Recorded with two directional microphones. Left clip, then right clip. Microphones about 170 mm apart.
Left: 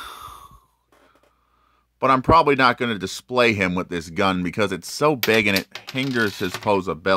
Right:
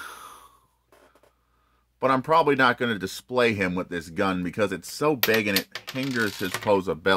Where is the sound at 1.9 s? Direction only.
35° left (ahead or behind).